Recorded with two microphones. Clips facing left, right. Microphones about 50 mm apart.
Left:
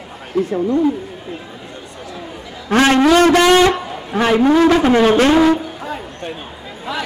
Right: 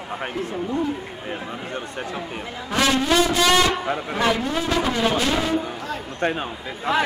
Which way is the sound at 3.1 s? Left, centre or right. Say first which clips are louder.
Left 8 dB; left.